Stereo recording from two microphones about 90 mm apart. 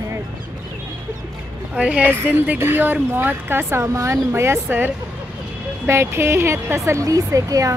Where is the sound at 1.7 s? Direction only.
15° right (ahead or behind).